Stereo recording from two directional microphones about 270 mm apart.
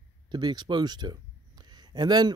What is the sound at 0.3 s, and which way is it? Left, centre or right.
A man's voice, centre.